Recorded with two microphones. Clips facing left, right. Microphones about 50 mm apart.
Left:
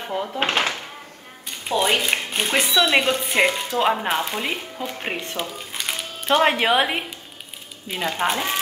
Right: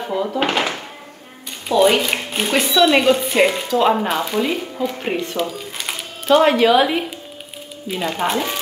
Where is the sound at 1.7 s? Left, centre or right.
Left.